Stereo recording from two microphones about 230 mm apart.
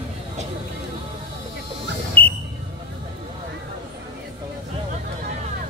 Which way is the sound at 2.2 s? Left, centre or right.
Centre.